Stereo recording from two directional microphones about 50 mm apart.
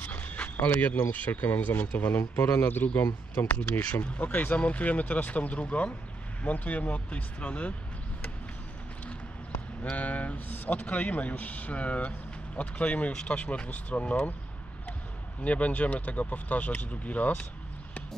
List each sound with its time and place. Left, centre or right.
0.0 s dog: left
1.1 s speech: left
2.3 s speech: left
3.3 s a man's voice: left
9.9 s a man's voice: left
15.4 s a man's voice: left